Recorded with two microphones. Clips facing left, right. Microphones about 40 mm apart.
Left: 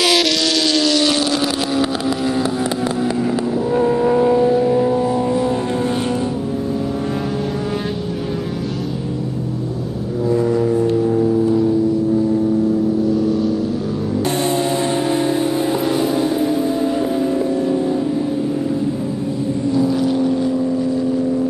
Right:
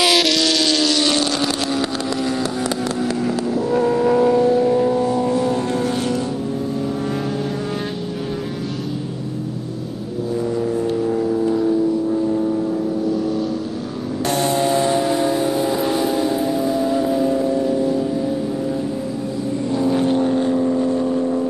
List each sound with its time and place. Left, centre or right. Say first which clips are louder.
0.0 s vehicle: even; centre
3.6 s vehicle: left 1 dB; centre
10.3 s vehicle: left 5 dB; centre
13.1 s vehicle: left 4 dB; centre
14.2 s vehicle: right 2 dB; left
15.9 s music: left 1 dB; left
17.3 s music: left 1 dB; centre
19.7 s vehicle: even; right